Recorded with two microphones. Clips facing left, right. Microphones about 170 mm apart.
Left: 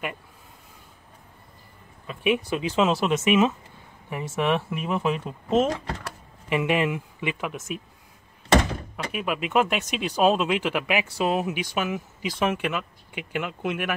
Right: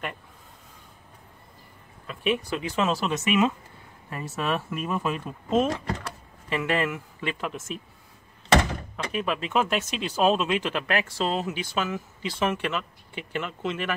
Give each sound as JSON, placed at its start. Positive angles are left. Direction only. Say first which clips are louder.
{"t": 2.0, "sound": "speech", "louder": "left 3 dB", "side_deg": 15}
{"t": 8.9, "sound": "speech", "louder": "right 1 dB", "side_deg": 10}